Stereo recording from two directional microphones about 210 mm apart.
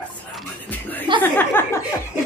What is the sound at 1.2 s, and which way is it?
Speech, 10° left (ahead or behind).